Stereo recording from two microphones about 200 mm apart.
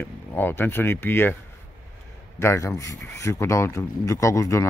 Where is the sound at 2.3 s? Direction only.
15° left (ahead or behind).